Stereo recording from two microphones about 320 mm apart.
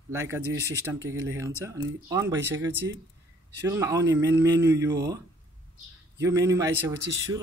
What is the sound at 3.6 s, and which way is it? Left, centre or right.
Speech, centre.